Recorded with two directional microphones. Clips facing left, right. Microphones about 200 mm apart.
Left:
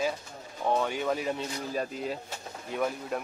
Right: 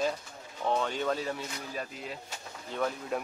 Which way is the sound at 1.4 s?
35° left (ahead or behind).